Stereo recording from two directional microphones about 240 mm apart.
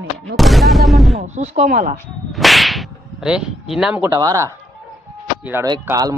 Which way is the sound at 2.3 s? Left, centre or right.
Centre.